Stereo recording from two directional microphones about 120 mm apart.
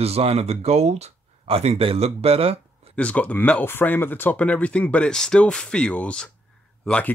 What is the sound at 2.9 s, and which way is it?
Speech, 10° left (ahead or behind).